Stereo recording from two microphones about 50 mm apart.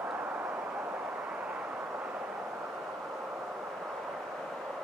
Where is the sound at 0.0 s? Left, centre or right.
Right.